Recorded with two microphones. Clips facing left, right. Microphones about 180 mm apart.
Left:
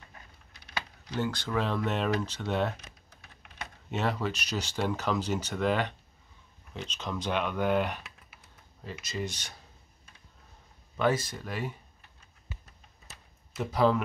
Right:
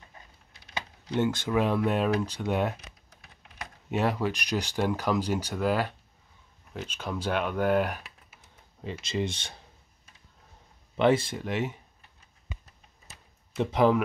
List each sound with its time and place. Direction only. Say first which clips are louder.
0.7 s typing: right 5 dB; 25° right (ahead or behind)
1.4 s speech: right 5 dB; 10° right (ahead or behind)
8.8 s speech: right 5 dB; 25° right (ahead or behind)
11.0 s speech: right 5 dB; 25° right (ahead or behind)
13.6 s speech: right 4 dB; 25° right (ahead or behind)